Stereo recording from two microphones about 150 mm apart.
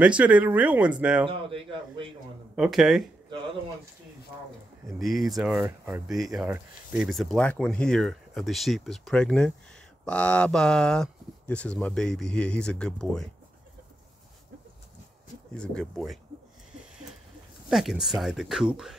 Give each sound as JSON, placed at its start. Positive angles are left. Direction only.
{"t": 0.0, "sound": "speech", "side_deg": -10}
{"t": 1.2, "sound": "a man's voice", "side_deg": -35}
{"t": 2.5, "sound": "speech", "side_deg": -5}
{"t": 4.9, "sound": "speech", "side_deg": 0}
{"t": 6.5, "sound": "speech", "side_deg": -10}
{"t": 7.1, "sound": "speech", "side_deg": 0}
{"t": 15.5, "sound": "speech", "side_deg": 5}
{"t": 17.6, "sound": "speech", "side_deg": -5}